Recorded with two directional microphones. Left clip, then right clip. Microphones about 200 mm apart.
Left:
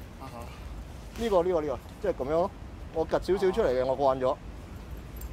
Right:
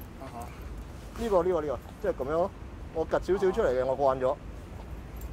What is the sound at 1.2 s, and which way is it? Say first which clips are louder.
Speech: left 1 dB; 20° left (ahead or behind).